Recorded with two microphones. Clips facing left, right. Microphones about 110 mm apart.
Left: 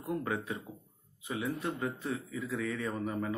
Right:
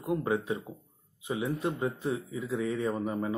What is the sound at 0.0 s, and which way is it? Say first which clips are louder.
A man's voice: right 5 dB; 20° right (ahead or behind).